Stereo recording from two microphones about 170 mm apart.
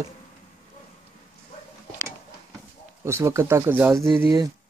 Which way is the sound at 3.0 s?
15° right (ahead or behind).